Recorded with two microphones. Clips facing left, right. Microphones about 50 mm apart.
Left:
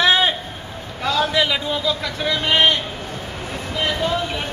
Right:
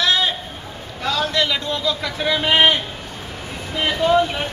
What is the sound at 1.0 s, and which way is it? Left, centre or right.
A man's voice, centre.